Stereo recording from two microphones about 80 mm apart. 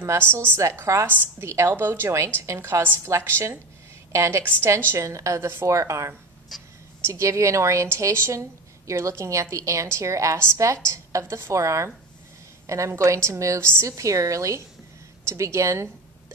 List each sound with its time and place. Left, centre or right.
0.6 s a woman's voice: right
6.5 s a sound: centre
7.1 s a woman's voice: right